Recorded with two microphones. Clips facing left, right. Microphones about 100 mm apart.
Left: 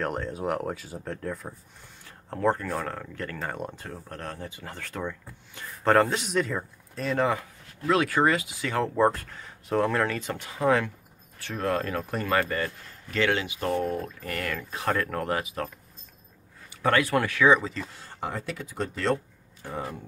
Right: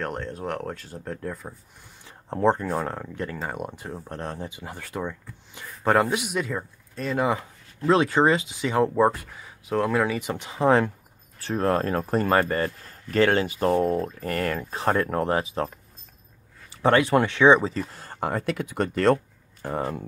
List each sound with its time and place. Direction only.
0.0 s speech: centre (ahead or behind)
2.0 s speech: 20° right (ahead or behind); by 7.2 s centre (ahead or behind)
7.2 s speech: 25° right (ahead or behind)
16.8 s speech: 25° right (ahead or behind); by 19.1 s 60° right (ahead or behind)
19.6 s speech: 45° right (ahead or behind)